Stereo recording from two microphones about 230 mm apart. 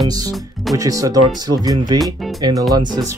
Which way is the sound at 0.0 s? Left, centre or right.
Centre.